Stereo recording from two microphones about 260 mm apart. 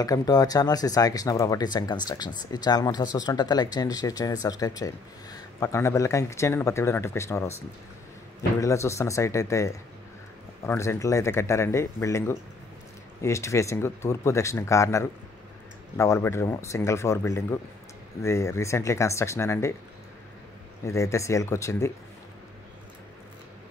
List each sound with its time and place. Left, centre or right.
0.0 s speech: centre
20.8 s speech: centre